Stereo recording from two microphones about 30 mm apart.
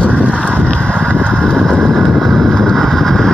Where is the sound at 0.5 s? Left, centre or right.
Left.